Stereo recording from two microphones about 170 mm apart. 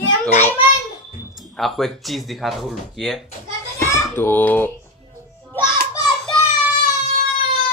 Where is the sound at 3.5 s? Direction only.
15° left (ahead or behind).